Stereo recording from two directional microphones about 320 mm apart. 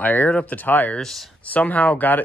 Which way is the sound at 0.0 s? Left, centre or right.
Centre.